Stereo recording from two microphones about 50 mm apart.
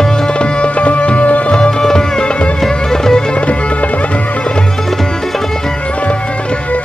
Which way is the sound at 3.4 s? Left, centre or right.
Left.